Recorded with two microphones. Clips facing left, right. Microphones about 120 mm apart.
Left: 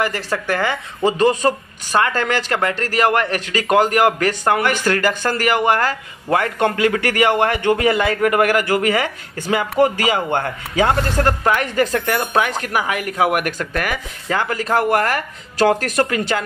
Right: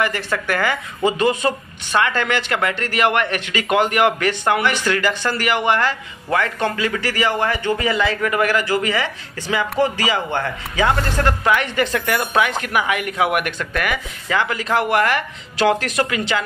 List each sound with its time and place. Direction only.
0.0 s a woman's voice: 35° left (ahead or behind)
6.3 s a man's voice: 55° left (ahead or behind)